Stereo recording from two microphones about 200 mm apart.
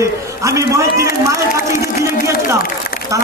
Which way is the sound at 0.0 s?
15° right (ahead or behind).